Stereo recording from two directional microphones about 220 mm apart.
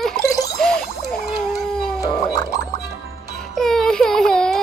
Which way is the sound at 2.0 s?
15° left (ahead or behind).